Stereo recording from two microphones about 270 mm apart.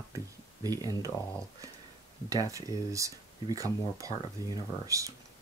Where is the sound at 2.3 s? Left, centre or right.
Centre.